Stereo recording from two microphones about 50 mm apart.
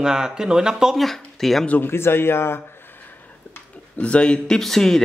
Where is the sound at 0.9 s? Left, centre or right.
Centre.